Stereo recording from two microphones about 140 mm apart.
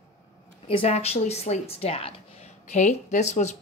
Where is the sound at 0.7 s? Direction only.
45° left (ahead or behind).